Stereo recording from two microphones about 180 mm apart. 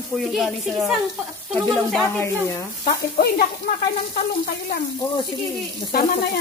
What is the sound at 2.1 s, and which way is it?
Speech, 15° left (ahead or behind).